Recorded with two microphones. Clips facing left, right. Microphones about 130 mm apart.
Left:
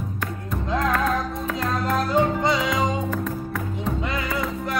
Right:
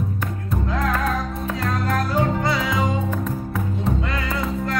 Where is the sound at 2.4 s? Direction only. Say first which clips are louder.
Left 1 dB; 20° left (ahead or behind).